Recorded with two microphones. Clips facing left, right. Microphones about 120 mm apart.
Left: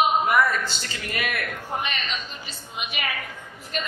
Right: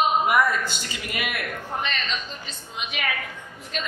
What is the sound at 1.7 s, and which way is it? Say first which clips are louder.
A woman's voice: right 1 dB; 10° left (ahead or behind).